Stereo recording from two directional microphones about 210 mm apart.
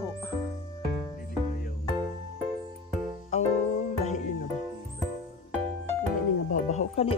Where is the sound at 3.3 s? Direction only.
30° left (ahead or behind).